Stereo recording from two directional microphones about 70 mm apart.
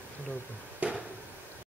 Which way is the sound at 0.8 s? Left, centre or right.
Right.